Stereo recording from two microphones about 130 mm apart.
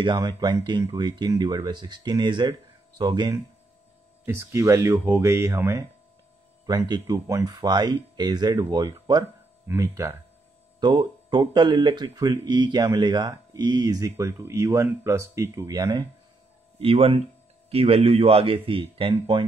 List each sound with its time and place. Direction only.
0.0 s speech: 35° right (ahead or behind)
4.3 s speech: 20° right (ahead or behind)
6.9 s speech: 30° right (ahead or behind)
10.8 s speech: 35° right (ahead or behind)
16.7 s speech: 50° right (ahead or behind)